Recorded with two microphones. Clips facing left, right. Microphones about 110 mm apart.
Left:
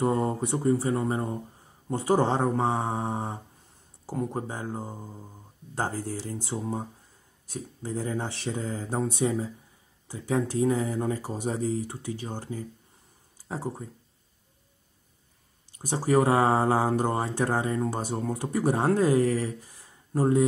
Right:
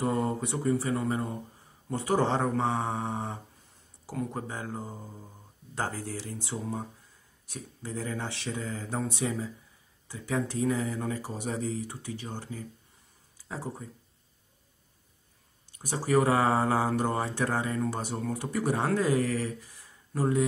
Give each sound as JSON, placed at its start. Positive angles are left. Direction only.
{"t": 0.0, "sound": "speech", "side_deg": 25}
{"t": 7.4, "sound": "speech", "side_deg": 30}
{"t": 16.0, "sound": "speech", "side_deg": 30}